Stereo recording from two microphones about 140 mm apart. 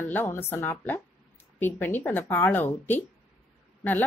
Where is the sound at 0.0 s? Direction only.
15° left (ahead or behind).